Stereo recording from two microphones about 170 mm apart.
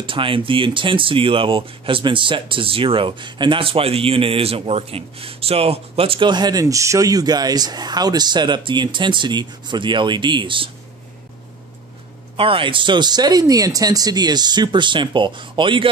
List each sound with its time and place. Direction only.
0.0 s speech: 30° right (ahead or behind)
12.4 s speech: 30° right (ahead or behind)